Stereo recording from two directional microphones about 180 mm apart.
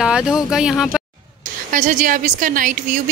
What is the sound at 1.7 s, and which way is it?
A woman's voice, 45° right (ahead or behind).